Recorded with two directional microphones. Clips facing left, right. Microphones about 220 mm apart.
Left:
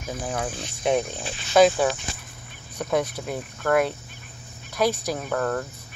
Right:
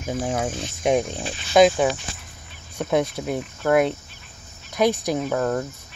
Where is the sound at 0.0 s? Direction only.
50° right (ahead or behind).